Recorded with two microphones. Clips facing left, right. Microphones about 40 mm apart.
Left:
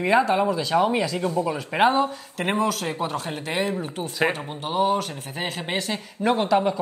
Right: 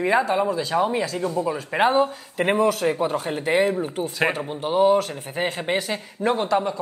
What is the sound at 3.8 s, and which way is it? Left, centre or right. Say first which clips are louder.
Speech: right 1 dB; left.